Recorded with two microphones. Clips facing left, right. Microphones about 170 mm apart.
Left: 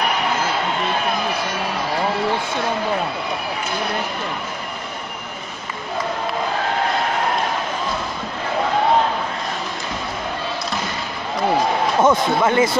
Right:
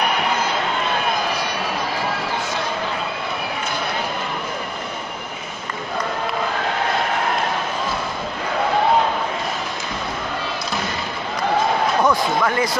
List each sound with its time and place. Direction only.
12.0 s speech: 20° left (ahead or behind)